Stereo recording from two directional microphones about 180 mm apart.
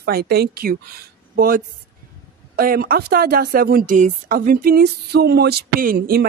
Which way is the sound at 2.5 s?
60° right (ahead or behind).